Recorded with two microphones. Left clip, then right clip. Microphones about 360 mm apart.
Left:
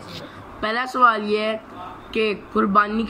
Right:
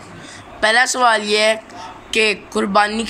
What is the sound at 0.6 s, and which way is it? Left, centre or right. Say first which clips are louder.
Speech: right 4 dB; right.